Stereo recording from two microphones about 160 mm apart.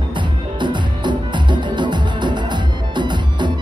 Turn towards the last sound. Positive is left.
turn(degrees=-30)  # may be behind; listen again after turning